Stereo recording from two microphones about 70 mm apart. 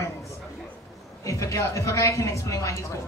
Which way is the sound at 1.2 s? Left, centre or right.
Left.